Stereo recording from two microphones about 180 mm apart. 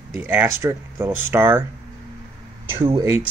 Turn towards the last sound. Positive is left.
turn(degrees=-15)  # may be behind; listen again after turning